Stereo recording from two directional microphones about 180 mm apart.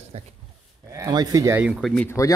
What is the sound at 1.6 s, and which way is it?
Speech, centre (ahead or behind).